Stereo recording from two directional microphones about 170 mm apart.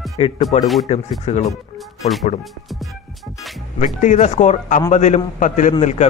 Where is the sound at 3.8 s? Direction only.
45° left (ahead or behind).